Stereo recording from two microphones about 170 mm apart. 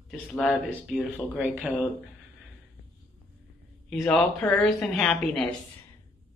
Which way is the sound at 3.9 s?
Centre (ahead or behind).